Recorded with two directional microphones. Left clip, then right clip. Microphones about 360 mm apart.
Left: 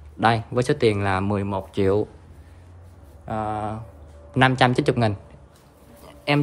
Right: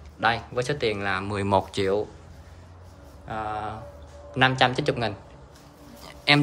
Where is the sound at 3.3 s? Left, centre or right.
Centre.